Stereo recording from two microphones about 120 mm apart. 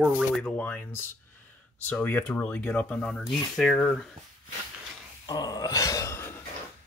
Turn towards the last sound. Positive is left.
turn(degrees=20)  # may be behind; listen again after turning